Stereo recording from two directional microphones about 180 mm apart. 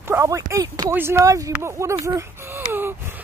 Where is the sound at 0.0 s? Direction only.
15° right (ahead or behind).